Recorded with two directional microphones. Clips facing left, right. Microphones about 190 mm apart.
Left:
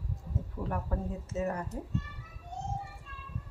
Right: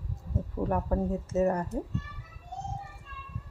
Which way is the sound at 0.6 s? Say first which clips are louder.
Right 7 dB; 40° right (ahead or behind).